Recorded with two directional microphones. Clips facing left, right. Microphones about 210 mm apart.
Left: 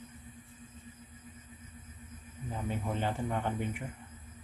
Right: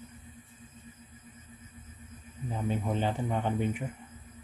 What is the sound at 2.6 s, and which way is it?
Speech, 20° right (ahead or behind).